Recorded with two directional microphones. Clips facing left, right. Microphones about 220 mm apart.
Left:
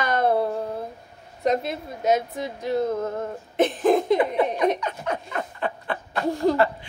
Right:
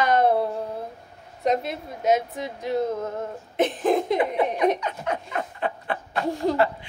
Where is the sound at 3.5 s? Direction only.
40° left (ahead or behind).